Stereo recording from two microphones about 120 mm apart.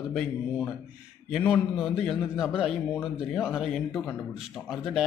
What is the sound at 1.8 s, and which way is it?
Speech, 5° right (ahead or behind).